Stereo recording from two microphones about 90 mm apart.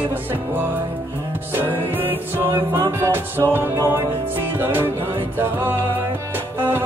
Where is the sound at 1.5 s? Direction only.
20° right (ahead or behind).